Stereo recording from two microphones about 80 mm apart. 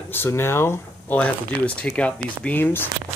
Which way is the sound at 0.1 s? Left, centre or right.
Left.